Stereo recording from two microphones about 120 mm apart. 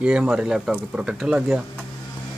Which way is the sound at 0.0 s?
10° right (ahead or behind).